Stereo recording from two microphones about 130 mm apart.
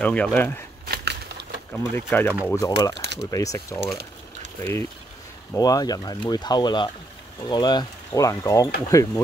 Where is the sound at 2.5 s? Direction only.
25° left (ahead or behind).